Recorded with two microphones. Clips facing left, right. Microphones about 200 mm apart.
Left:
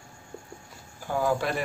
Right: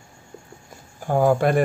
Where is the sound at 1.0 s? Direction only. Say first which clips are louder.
Right 8 dB; 50° right (ahead or behind).